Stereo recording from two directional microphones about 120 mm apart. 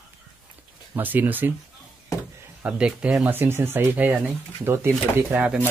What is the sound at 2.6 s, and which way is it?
Speech, 10° right (ahead or behind).